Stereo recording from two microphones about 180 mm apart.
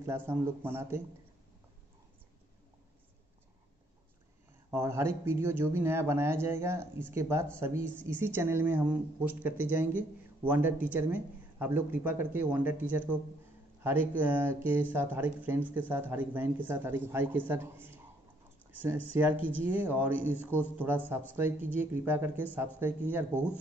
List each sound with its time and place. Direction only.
0.3 s a woman's voice: 10° right (ahead or behind)
4.6 s a woman's voice: 15° right (ahead or behind)
19.3 s speech: 30° left (ahead or behind)
19.6 s a woman's voice: 10° right (ahead or behind)